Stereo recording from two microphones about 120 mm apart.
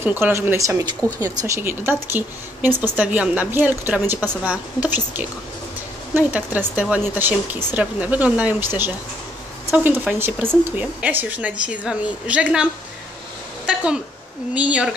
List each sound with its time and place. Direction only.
0.0 s speech: 15° right (ahead or behind)
14.5 s speech: 10° right (ahead or behind)